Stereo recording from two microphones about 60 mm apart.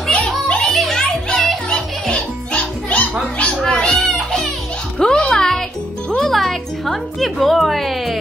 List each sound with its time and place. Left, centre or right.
0.1 s music: centre
0.7 s music: centre
2.1 s music: left
3.3 s a sound: centre
4.0 s music: centre